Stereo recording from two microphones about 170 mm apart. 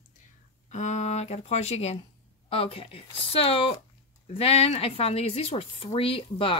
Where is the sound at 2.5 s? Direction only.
35° left (ahead or behind).